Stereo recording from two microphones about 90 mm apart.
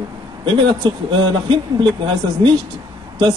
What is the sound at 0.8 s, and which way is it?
Speech, 60° right (ahead or behind).